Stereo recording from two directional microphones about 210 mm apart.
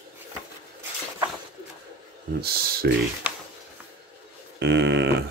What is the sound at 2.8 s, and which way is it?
Speech, 50° right (ahead or behind).